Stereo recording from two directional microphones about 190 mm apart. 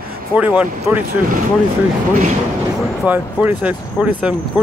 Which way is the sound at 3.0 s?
5° right (ahead or behind).